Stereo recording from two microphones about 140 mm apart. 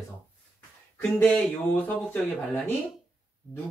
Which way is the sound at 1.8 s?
10° left (ahead or behind).